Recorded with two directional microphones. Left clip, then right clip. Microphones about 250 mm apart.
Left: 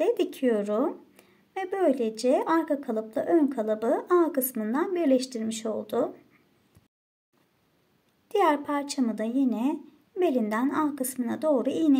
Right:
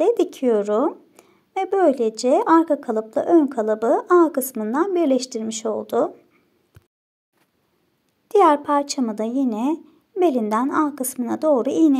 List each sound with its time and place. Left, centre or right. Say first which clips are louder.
0.0 s a woman's voice: right 6 dB; centre
8.3 s a woman's voice: right 9 dB; right